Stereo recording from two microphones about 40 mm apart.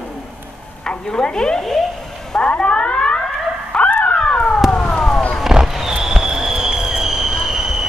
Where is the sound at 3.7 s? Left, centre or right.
Left.